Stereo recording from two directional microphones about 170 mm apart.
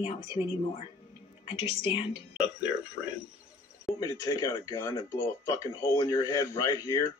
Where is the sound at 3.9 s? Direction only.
20° left (ahead or behind).